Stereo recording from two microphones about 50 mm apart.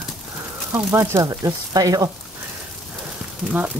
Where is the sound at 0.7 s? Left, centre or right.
Right.